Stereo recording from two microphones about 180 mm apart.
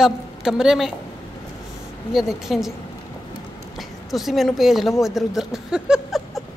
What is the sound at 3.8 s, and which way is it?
A woman's voice, centre (ahead or behind).